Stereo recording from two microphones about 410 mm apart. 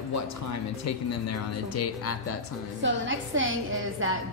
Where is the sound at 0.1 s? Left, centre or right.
Left.